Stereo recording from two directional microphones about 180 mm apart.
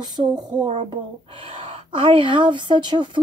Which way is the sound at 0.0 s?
25° right (ahead or behind).